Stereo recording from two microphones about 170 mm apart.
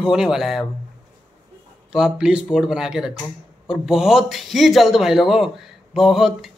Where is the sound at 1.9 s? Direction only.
5° right (ahead or behind).